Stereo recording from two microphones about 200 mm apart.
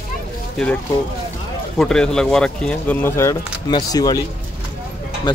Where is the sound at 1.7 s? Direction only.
5° left (ahead or behind); by 4.2 s 20° left (ahead or behind).